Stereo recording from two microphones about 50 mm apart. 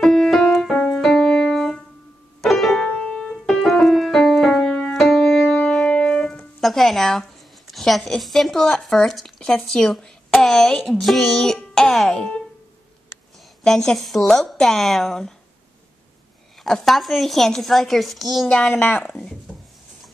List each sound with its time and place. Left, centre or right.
0.0 s music: centre
2.4 s piano: centre
2.8 s music: centre
3.5 s music: centre
6.0 s speech: centre
13.7 s speech: centre
16.6 s a woman's voice: centre
18.5 s a woman's voice: left
18.8 s speech: left